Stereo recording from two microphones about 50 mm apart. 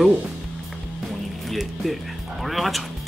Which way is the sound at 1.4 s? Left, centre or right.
Centre.